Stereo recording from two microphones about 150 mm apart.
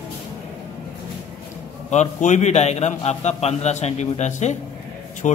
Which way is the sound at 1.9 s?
50° left (ahead or behind).